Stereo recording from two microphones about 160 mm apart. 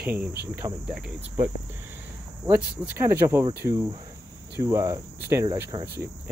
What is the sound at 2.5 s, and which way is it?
Speech, 10° right (ahead or behind).